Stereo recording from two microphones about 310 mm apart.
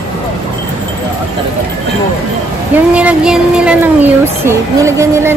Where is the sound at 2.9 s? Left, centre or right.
Centre.